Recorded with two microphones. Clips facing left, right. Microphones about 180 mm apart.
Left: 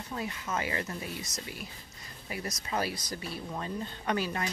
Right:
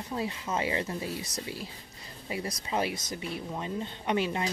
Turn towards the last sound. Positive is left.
turn(degrees=-20)  # may be behind; listen again after turning